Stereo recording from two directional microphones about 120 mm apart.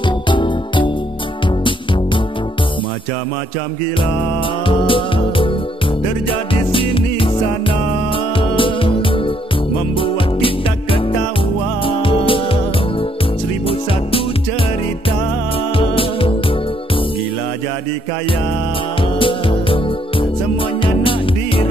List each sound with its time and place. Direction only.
0.3 s music: 40° left (ahead or behind)
4.6 s music: 45° left (ahead or behind)
6.5 s music: 45° left (ahead or behind)
15.8 s music: 50° left (ahead or behind)
19.1 s music: 45° left (ahead or behind)